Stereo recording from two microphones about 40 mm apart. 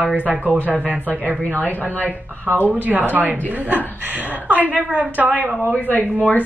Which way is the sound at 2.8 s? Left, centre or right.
Right.